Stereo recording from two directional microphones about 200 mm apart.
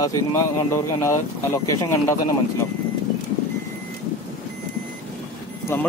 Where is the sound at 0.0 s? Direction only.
15° left (ahead or behind).